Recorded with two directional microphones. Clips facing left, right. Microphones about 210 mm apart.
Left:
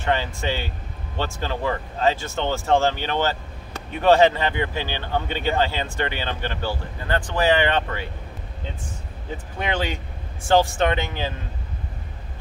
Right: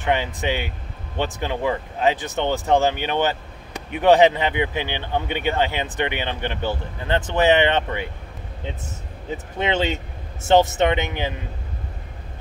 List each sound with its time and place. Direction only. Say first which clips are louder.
0.0 s speech: right 2 dB; 15° right (ahead or behind)
9.6 s speech: right 4 dB; 25° right (ahead or behind)